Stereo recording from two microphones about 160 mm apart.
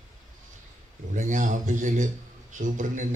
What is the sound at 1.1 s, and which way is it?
Speech, 50° right (ahead or behind).